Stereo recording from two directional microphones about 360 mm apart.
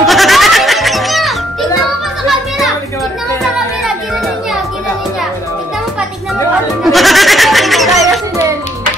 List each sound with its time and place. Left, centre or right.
0.0 s music: centre
6.8 s music: centre